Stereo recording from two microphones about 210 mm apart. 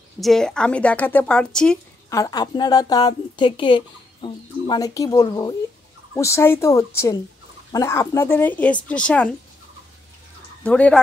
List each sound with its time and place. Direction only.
0.2 s speech: centre (ahead or behind)
2.0 s a woman's voice: 15° left (ahead or behind)
10.6 s speech: 5° left (ahead or behind)